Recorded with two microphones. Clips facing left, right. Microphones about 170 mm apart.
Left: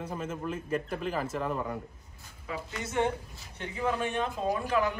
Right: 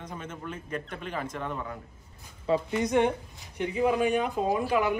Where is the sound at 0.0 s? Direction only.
5° left (ahead or behind).